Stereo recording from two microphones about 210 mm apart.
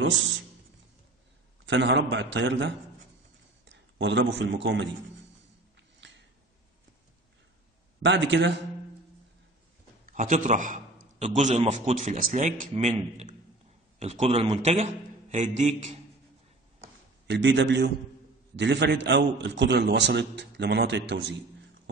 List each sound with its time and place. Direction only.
1.7 s a man's voice: 60° right (ahead or behind)
5.9 s a sound: 55° right (ahead or behind)
8.0 s a man's voice: 60° right (ahead or behind)
10.0 s a man's voice: 35° right (ahead or behind)
17.3 s a man's voice: 60° right (ahead or behind)